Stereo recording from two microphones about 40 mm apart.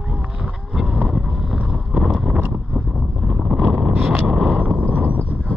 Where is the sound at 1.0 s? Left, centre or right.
Centre.